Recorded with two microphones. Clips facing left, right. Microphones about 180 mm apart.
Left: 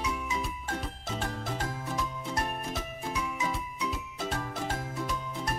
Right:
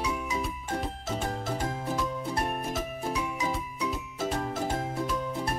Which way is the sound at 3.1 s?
35° right (ahead or behind).